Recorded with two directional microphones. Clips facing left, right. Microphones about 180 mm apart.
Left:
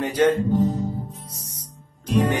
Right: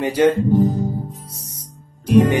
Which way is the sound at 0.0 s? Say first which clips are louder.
Right 3 dB; 10° right (ahead or behind).